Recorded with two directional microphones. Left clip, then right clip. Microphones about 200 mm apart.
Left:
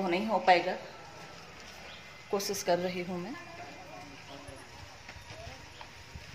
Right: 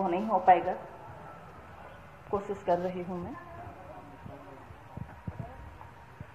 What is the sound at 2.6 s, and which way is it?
Speech, 25° left (ahead or behind).